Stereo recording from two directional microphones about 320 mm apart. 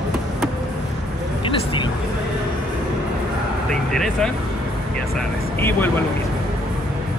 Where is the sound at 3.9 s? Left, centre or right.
Centre.